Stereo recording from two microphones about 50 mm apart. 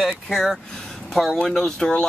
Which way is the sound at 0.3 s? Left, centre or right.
Centre.